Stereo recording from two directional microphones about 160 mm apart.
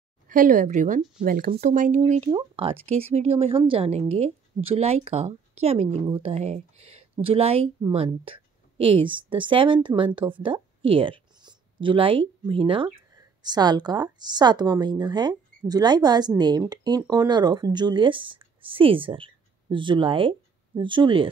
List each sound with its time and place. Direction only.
0.3 s speech: 55° right (ahead or behind)
1.2 s speech: 60° right (ahead or behind)
2.2 s a woman's voice: 35° right (ahead or behind)